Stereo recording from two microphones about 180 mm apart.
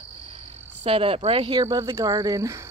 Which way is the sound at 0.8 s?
30° right (ahead or behind).